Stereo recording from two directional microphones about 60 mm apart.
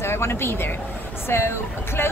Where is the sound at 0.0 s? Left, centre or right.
Left.